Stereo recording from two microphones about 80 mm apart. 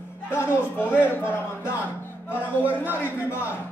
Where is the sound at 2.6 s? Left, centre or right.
Right.